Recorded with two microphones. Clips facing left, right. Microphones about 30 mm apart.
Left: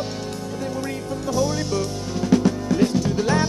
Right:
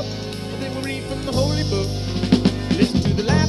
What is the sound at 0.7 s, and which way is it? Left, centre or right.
Music, right.